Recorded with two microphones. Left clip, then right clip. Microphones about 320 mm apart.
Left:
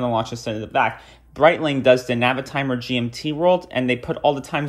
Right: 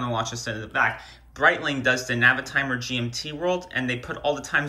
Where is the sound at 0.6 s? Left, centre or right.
Left.